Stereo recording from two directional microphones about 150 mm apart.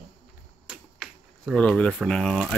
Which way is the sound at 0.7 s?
Centre (ahead or behind).